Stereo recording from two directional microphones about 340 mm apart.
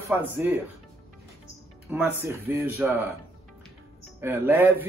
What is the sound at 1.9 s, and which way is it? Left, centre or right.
Speech, centre.